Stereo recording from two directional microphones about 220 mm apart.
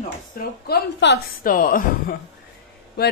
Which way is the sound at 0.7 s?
50° left (ahead or behind).